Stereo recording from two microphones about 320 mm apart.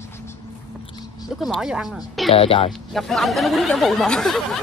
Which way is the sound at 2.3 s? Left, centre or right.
Centre.